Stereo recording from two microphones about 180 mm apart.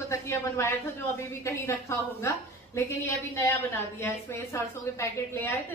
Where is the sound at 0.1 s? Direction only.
15° left (ahead or behind).